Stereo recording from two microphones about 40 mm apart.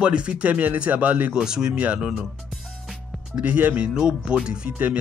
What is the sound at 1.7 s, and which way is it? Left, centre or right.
Speech, right.